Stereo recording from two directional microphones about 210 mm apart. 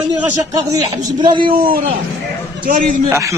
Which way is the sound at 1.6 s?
40° right (ahead or behind).